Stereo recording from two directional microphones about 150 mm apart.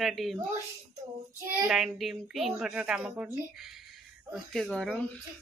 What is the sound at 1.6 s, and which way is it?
A woman's voice, 5° right (ahead or behind).